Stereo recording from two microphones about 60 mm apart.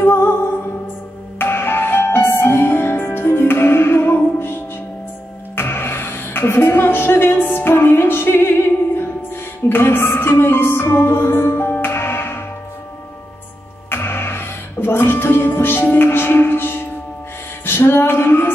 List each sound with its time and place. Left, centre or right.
0.0 s music: left
1.4 s music: left
5.6 s music: left
13.8 s music: left